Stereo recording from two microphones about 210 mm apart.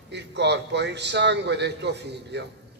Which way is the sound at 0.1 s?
55° right (ahead or behind).